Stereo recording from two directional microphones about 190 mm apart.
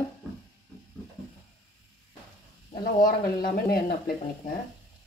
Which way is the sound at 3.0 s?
50° left (ahead or behind).